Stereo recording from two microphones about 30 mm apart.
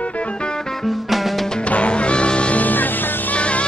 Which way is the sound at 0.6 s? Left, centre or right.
Centre.